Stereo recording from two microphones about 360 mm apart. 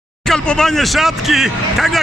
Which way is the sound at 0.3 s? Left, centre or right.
Centre.